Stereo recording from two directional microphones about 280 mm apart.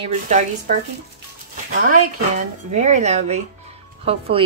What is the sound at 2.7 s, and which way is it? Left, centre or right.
Speech, right.